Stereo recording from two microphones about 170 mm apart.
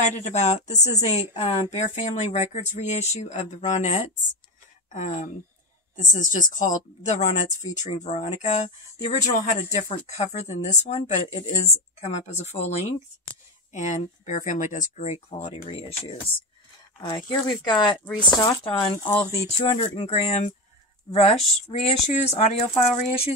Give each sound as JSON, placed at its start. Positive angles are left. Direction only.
{"t": 0.0, "sound": "speech", "side_deg": 45}
{"t": 17.0, "sound": "speech", "side_deg": 25}